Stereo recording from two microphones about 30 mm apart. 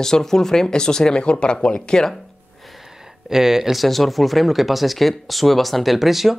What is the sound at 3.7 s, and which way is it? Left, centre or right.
Speech, centre.